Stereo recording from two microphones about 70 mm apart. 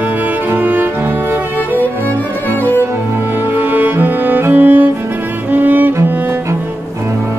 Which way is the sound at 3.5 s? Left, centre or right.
Right.